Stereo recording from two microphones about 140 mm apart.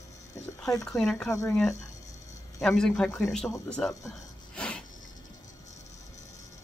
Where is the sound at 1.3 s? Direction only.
20° left (ahead or behind).